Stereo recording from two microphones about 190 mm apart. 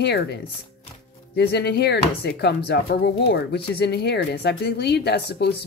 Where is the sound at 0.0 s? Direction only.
60° left (ahead or behind).